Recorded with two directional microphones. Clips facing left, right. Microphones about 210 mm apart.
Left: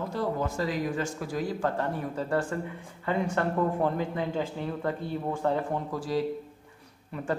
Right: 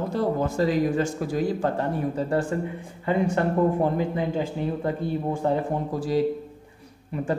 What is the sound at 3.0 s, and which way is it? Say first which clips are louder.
Speech: right 5 dB; 15° right (ahead or behind).